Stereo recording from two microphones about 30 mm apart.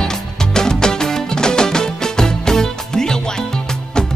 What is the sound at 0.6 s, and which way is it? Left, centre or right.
Music, left.